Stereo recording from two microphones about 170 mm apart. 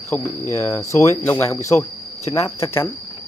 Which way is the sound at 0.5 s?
20° left (ahead or behind).